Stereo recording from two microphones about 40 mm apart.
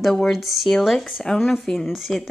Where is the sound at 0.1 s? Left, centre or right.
Centre.